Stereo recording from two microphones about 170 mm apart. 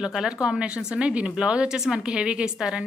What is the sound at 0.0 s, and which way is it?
Speech, 5° right (ahead or behind).